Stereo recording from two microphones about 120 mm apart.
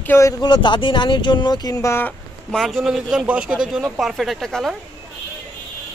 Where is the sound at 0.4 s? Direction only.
40° left (ahead or behind); by 2.1 s 20° left (ahead or behind).